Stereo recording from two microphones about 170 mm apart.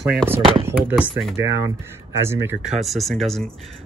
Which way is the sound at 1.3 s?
15° right (ahead or behind).